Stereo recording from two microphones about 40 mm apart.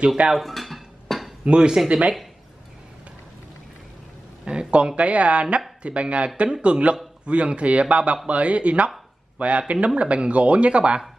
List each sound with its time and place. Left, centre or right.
0.4 s dishes: centre
1.4 s speech: right
4.5 s speech: right